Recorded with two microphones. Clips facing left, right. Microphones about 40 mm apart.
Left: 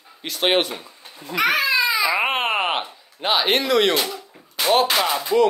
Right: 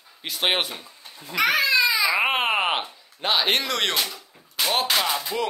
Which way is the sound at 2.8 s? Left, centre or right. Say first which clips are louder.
Left 2 dB; centre.